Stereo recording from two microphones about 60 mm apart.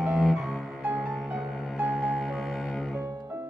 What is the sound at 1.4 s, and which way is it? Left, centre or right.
Music, centre.